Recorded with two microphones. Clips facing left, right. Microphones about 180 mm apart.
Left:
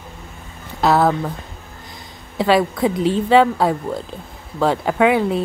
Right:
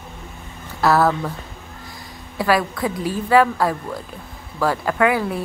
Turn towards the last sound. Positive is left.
turn(degrees=20)  # may be behind; listen again after turning